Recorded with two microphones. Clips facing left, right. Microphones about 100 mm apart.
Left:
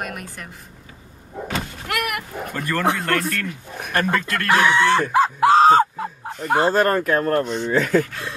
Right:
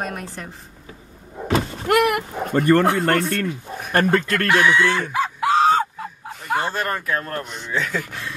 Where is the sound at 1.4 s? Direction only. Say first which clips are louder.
Right 8 dB; 30° right (ahead or behind).